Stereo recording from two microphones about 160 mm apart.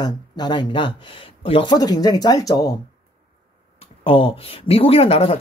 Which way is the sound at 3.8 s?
35° left (ahead or behind).